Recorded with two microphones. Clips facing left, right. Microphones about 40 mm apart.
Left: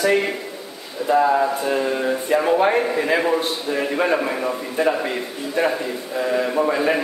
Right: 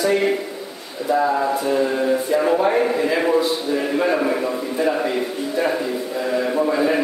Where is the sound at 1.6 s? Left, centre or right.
Left.